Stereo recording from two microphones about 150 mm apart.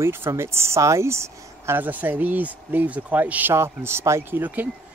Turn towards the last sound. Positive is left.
turn(degrees=-10)  # may be behind; listen again after turning